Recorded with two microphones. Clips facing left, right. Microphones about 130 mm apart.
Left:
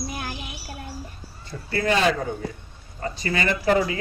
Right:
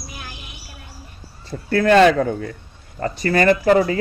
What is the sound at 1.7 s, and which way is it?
Speech, 65° right (ahead or behind).